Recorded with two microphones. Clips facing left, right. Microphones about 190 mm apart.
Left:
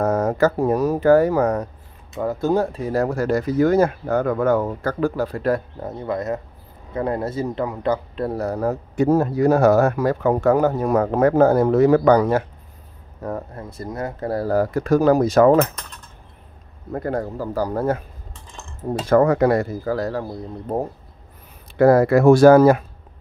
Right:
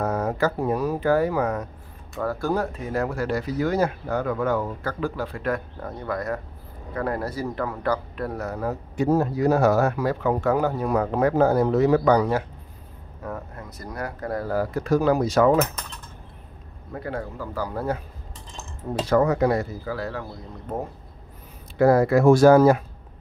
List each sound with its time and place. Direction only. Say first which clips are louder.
0.0 s speech: left 5 dB; 45° left (ahead or behind)
2.1 s a man's voice: left 5 dB; 20° left (ahead or behind); by 5.6 s 40° left (ahead or behind)
5.8 s a man's voice: left 4 dB; 25° left (ahead or behind); by 12.4 s 50° left (ahead or behind)
13.2 s a man's voice: left 6 dB; 35° left (ahead or behind)
16.9 s a man's voice: left 7 dB; 45° left (ahead or behind)
19.0 s a man's voice: left 4 dB; 55° left (ahead or behind); by 20.8 s 35° left (ahead or behind)
21.7 s speech: left 4 dB; 60° left (ahead or behind)